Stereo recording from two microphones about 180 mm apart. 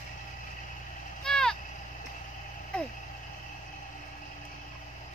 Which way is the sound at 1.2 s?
5° left (ahead or behind).